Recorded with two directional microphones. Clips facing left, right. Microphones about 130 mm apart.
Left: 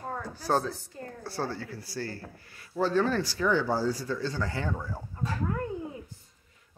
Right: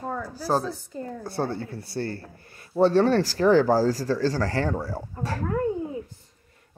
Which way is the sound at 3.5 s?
90° right.